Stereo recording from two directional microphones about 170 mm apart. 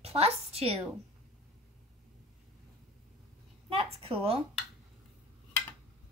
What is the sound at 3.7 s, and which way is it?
Speech, 35° right (ahead or behind).